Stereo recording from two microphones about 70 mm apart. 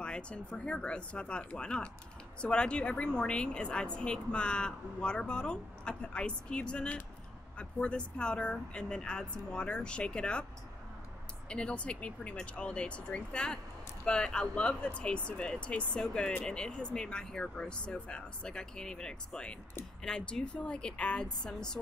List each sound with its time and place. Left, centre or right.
0.0 s a woman's voice: centre
11.4 s a woman's voice: centre